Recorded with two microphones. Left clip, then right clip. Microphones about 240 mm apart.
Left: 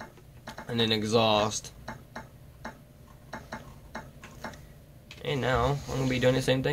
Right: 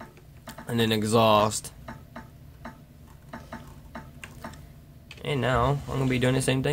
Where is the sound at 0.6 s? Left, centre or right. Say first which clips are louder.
Right 2 dB; centre.